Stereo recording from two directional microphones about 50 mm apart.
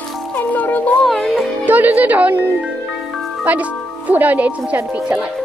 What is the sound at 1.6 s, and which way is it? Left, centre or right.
Speech, right.